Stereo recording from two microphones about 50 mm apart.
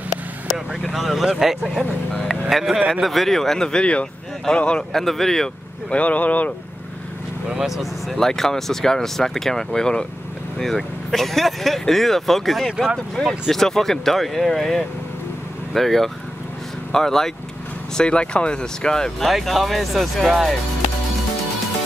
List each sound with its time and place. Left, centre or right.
0.8 s a man's voice: centre; by 4.8 s left
4.9 s speech: centre
5.9 s speech: left
7.4 s speech: centre
17.9 s speech: centre